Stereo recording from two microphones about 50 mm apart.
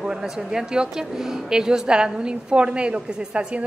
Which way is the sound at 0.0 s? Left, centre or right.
Centre.